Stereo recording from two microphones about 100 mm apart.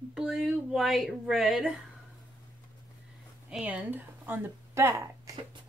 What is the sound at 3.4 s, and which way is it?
Speech, 10° right (ahead or behind).